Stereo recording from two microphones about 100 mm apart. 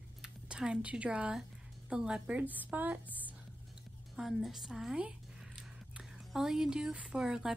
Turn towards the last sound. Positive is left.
turn(degrees=-5)  # may be behind; listen again after turning